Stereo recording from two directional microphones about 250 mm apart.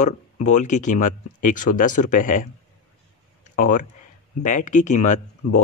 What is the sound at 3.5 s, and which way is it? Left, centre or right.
Speech, left.